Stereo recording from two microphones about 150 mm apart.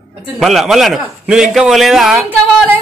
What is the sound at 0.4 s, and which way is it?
A man's voice, centre (ahead or behind).